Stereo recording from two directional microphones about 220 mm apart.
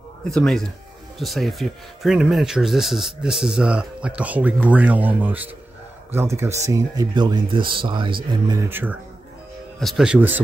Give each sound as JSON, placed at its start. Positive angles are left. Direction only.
{"t": 0.3, "sound": "speech", "side_deg": 0}
{"t": 8.6, "sound": "speech", "side_deg": -10}